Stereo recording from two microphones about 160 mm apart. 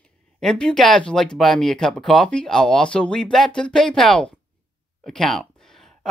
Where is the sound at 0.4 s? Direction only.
5° left (ahead or behind).